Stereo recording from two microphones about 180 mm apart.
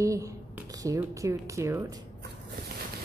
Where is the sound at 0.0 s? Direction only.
15° right (ahead or behind).